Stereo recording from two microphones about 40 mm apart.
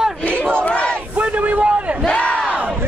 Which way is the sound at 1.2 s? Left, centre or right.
Right.